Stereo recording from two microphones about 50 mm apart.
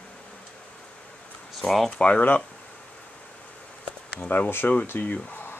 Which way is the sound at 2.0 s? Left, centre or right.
Left.